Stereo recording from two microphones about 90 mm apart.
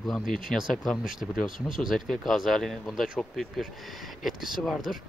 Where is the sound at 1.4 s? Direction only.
65° right (ahead or behind).